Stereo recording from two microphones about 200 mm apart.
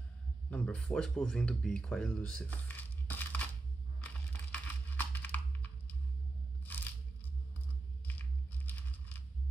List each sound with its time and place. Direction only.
0.5 s speech: 5° left (ahead or behind)
4.0 s crumpling: 10° left (ahead or behind)
6.6 s crunch: 10° left (ahead or behind)
8.1 s a sound: 10° left (ahead or behind)